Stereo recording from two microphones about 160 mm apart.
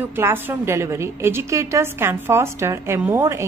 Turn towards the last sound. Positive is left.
turn(degrees=-15)  # may be behind; listen again after turning